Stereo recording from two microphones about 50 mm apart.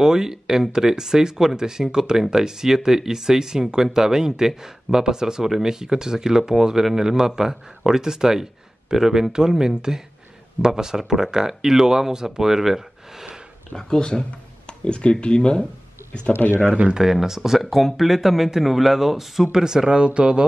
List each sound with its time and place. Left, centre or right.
0.0 s speech: centre
13.7 s speech: centre
16.9 s speech: centre